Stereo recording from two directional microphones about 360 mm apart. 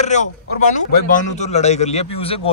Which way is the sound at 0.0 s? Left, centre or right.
Centre.